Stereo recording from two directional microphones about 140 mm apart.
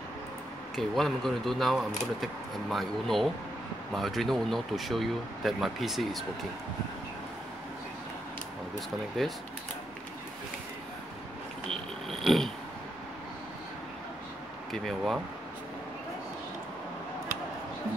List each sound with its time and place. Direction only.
0.7 s speech: centre (ahead or behind)
8.7 s speech: centre (ahead or behind)
11.6 s speech: 5° left (ahead or behind)
14.7 s speech: centre (ahead or behind)